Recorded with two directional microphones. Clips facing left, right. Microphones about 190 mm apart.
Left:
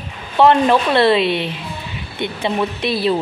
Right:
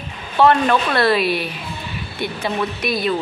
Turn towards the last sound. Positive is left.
turn(degrees=30)  # may be behind; listen again after turning